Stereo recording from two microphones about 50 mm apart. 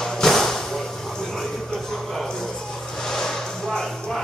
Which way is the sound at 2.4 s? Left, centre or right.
Centre.